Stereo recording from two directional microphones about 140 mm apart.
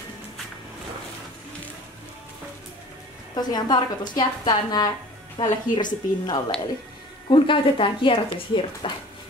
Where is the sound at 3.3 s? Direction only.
30° left (ahead or behind).